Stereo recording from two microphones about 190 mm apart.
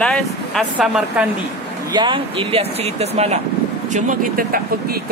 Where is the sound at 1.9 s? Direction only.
25° right (ahead or behind).